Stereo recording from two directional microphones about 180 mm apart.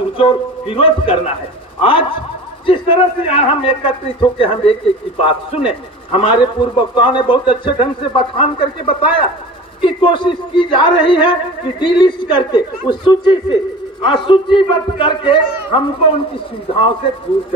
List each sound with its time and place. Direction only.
0.2 s a man's voice: 30° left (ahead or behind)